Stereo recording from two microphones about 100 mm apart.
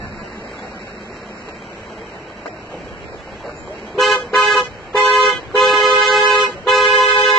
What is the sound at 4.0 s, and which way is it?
Car, 5° left (ahead or behind).